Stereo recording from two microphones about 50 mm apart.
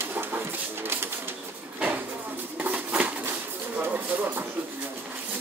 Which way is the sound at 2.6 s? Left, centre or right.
Right.